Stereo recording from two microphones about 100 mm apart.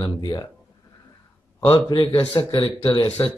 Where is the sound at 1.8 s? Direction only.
50° left (ahead or behind).